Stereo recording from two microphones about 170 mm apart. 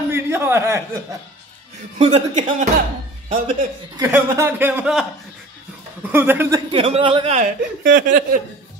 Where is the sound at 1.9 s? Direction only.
35° right (ahead or behind).